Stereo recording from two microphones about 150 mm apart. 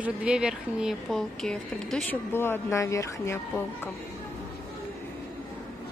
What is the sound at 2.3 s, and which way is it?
Speech, 15° left (ahead or behind).